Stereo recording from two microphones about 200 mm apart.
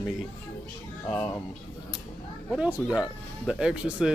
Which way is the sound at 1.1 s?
15° left (ahead or behind).